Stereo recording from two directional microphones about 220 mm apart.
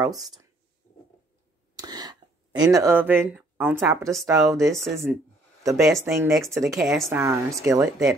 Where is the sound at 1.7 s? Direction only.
20° right (ahead or behind).